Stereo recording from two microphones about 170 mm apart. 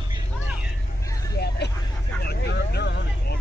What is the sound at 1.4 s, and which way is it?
Vehicle, 75° left (ahead or behind).